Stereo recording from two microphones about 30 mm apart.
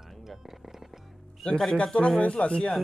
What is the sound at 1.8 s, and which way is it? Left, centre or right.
Speech, left.